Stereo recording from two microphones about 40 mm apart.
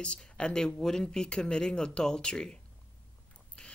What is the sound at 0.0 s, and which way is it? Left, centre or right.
Speech, left.